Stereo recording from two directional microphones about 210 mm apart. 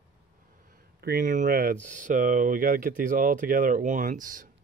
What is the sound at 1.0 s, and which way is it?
Speech, 45° right (ahead or behind).